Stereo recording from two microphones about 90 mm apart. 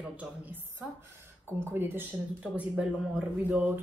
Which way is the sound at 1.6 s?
25° right (ahead or behind).